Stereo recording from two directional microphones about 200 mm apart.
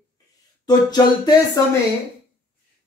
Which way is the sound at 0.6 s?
20° left (ahead or behind).